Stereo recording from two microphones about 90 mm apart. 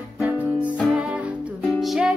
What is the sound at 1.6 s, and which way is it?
Music, centre (ahead or behind).